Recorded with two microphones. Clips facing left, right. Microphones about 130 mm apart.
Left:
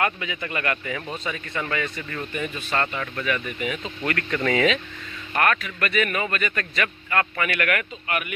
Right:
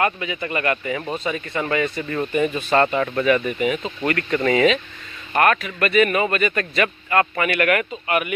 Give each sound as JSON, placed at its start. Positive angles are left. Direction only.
{"t": 0.0, "sound": "speech", "side_deg": -5}